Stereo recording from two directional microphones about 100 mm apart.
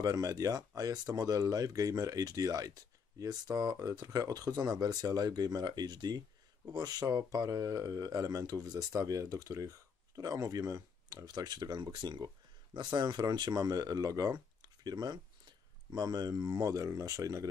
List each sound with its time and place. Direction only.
0.0 s speech: 40° right (ahead or behind)